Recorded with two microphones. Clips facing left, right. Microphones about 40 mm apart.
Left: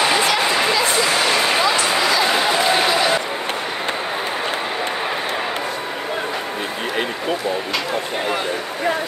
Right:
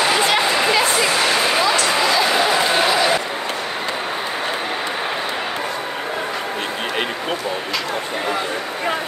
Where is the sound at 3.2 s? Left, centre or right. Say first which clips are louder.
Even; left.